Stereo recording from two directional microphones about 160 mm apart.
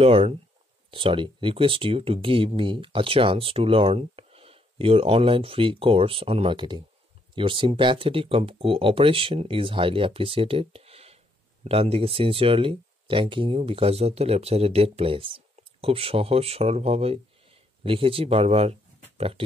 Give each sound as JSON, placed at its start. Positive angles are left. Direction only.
{"t": 0.0, "sound": "speech", "side_deg": -35}